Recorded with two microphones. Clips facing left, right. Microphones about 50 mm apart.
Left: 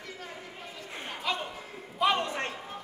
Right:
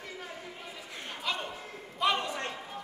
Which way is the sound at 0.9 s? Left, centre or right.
Left.